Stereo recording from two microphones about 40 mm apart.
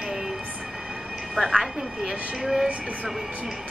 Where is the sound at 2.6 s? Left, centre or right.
Right.